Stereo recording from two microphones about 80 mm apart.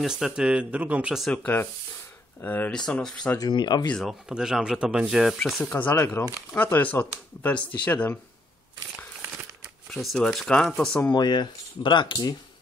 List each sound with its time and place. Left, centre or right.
0.0 s speech: centre
1.3 s speech: left
2.7 s speech: centre
3.3 s speech: left
4.0 s speech: centre
5.6 s speech: left
10.0 s speech: centre
11.1 s speech: left